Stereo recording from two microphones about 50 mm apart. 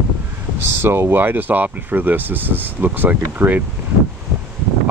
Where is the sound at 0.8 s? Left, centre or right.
Right.